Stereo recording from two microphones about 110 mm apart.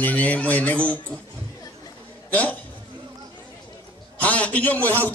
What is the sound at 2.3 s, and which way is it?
Speech, 15° left (ahead or behind).